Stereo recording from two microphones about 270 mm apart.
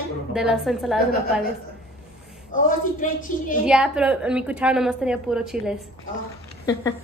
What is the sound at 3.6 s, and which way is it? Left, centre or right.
A woman's voice, centre.